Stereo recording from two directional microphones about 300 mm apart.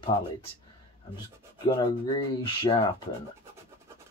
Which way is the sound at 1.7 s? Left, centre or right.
Centre.